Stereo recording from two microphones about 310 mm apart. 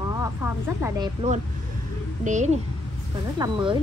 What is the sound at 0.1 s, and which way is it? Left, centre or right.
A woman's voice, centre.